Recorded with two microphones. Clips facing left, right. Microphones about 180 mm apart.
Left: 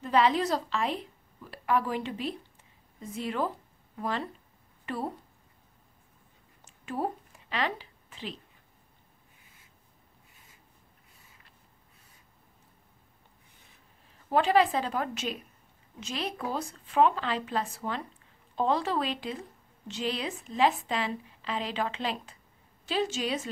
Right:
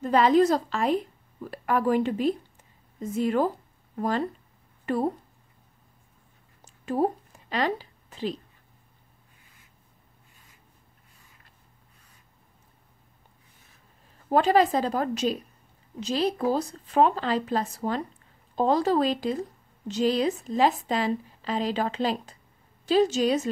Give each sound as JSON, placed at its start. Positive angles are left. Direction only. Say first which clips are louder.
{"t": 0.0, "sound": "a woman's voice", "louder": "right 6 dB", "side_deg": -45}
{"t": 6.6, "sound": "a sound", "louder": "right 7 dB", "side_deg": -40}
{"t": 14.3, "sound": "a woman's voice", "louder": "right 3 dB", "side_deg": -40}